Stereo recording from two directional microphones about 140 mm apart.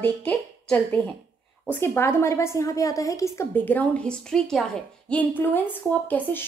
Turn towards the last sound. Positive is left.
turn(degrees=10)  # may be behind; listen again after turning